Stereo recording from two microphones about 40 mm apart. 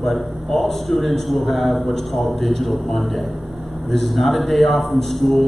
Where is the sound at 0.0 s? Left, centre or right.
Centre.